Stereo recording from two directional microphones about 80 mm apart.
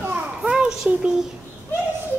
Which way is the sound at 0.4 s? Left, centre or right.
Centre.